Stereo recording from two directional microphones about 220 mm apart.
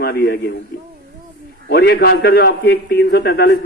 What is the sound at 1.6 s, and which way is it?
A man's voice, 45° left (ahead or behind).